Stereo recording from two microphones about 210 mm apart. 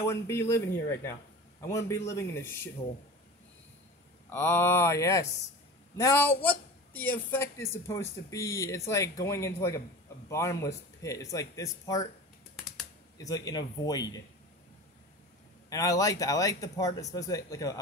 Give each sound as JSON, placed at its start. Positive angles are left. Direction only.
{"t": 0.0, "sound": "speech", "side_deg": 10}
{"t": 4.3, "sound": "a man's voice", "side_deg": 10}
{"t": 13.2, "sound": "speech", "side_deg": 15}
{"t": 15.7, "sound": "speech", "side_deg": 15}